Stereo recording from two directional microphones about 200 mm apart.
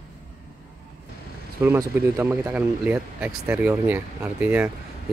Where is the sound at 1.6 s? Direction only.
10° right (ahead or behind).